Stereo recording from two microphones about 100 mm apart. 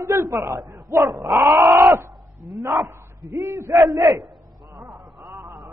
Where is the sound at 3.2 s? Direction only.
35° right (ahead or behind).